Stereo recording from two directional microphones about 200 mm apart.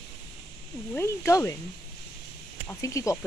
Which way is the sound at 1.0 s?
15° left (ahead or behind).